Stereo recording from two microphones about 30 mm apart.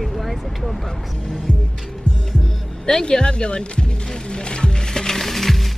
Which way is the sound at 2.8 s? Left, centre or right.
Left.